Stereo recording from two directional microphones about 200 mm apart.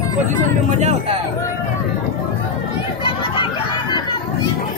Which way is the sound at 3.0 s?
25° left (ahead or behind).